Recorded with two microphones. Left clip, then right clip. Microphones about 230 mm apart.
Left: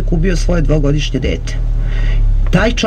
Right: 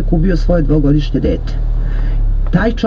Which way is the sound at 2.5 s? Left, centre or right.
Left.